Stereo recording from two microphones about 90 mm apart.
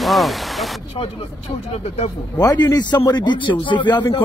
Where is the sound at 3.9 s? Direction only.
55° left (ahead or behind).